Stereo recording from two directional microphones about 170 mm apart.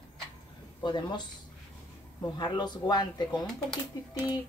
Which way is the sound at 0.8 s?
25° left (ahead or behind).